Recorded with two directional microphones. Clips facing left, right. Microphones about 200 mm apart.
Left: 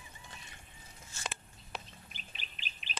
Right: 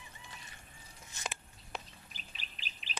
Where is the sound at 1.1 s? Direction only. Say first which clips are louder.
Even; 20° right (ahead or behind).